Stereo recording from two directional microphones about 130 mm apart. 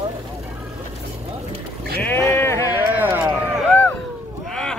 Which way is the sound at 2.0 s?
20° left (ahead or behind).